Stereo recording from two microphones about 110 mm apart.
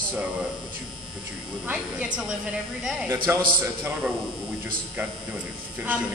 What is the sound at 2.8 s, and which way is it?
Speech, 5° right (ahead or behind).